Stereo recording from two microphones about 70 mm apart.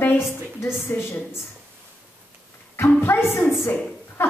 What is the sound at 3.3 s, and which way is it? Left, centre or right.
Speech, left.